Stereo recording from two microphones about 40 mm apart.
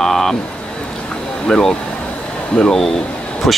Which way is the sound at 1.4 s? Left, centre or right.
Centre.